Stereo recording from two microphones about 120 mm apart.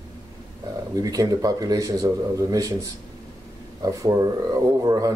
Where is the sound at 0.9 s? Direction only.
30° right (ahead or behind).